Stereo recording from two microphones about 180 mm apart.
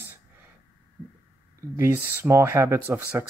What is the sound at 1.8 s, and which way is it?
Speech, 15° right (ahead or behind).